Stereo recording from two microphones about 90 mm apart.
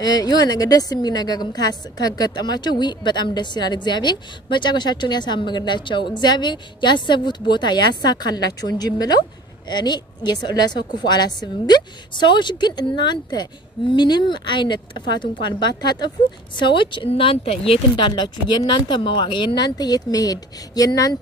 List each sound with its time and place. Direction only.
0.0 s a woman's voice: 45° left (ahead or behind)
16.5 s speech: 65° left (ahead or behind); by 21.2 s 40° left (ahead or behind)